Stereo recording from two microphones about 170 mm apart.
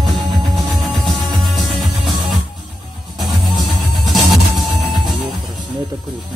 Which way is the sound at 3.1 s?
Centre (ahead or behind).